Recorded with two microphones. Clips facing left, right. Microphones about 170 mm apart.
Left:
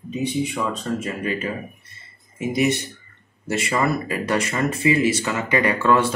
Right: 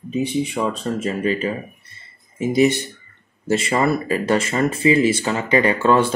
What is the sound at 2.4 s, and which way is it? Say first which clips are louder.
Speech: right 4 dB; 30° right (ahead or behind).